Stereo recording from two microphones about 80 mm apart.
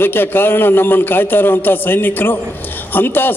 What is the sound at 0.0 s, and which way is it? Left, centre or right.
A man's voice, left.